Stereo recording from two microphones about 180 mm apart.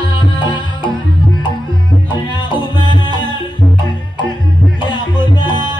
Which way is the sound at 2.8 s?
25° left (ahead or behind).